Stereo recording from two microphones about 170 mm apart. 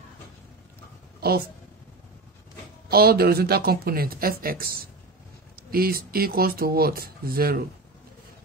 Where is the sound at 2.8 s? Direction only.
65° right (ahead or behind).